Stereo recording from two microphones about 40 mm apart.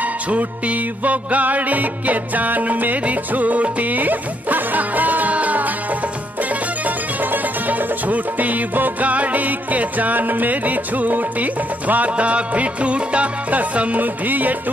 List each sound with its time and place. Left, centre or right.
0.0 s music: right
7.2 s music: right